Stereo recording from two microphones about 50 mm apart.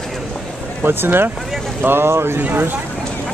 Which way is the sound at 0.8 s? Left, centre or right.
Right.